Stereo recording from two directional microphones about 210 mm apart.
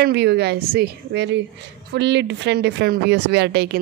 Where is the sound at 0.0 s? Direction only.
50° right (ahead or behind).